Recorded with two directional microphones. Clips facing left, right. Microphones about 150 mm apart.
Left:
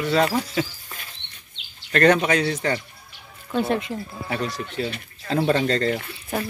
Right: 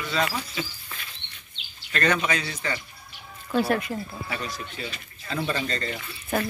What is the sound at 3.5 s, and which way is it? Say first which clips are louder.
Speech: left 1 dB; 20° left (ahead or behind).